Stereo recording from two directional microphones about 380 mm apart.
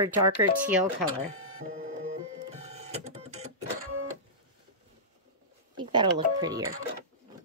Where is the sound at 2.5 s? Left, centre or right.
Centre.